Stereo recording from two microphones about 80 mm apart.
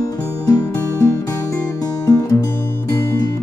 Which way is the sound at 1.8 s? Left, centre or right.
Left.